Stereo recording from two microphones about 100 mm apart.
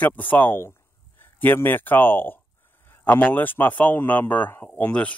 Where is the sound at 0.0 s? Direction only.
15° left (ahead or behind).